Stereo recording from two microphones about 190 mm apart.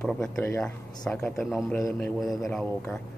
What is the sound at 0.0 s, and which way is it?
Speech, 5° left (ahead or behind).